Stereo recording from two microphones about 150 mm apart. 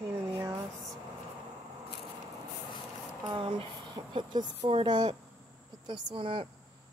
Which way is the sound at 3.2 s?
30° right (ahead or behind).